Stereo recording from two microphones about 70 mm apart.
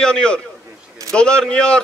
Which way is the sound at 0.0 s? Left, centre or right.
Centre.